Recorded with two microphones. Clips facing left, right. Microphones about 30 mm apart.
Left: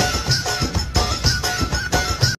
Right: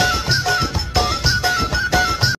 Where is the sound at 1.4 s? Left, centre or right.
Centre.